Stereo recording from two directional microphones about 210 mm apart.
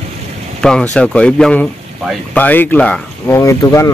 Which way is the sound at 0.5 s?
5° left (ahead or behind).